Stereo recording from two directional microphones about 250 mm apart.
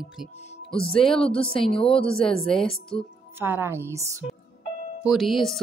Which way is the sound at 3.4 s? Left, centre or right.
Centre.